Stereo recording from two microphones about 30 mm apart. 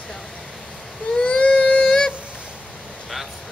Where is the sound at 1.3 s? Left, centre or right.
Left.